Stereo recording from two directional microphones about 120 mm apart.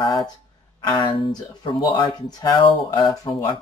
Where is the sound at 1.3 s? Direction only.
35° left (ahead or behind).